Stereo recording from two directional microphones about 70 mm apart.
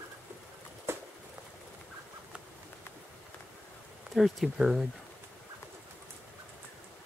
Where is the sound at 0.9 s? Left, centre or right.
Right.